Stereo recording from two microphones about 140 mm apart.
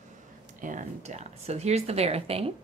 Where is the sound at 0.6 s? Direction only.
60° right (ahead or behind); by 2.5 s 45° right (ahead or behind).